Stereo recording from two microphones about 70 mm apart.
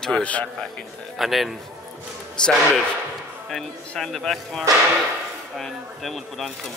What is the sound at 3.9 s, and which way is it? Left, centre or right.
A man's voice, centre.